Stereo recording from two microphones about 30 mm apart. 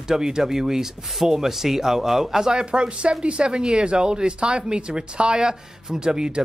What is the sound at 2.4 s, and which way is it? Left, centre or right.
Speech, right.